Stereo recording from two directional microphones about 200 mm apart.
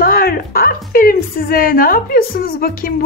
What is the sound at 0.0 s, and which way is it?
A woman's voice, 45° left (ahead or behind).